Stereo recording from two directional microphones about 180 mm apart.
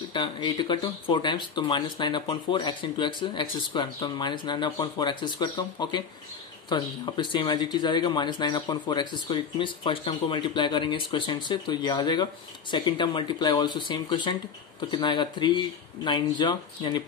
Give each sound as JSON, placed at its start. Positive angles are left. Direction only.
{"t": 0.1, "sound": "speech", "side_deg": 25}